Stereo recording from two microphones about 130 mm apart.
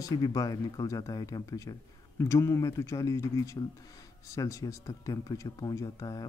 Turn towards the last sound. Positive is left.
turn(degrees=30)  # may be behind; listen again after turning